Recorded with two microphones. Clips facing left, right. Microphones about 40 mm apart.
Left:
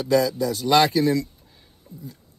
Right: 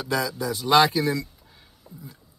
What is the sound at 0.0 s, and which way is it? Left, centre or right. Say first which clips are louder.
A man's voice: left 6 dB; right.